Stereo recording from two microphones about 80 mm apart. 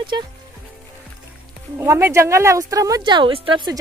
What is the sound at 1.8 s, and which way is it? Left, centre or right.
Speech, right.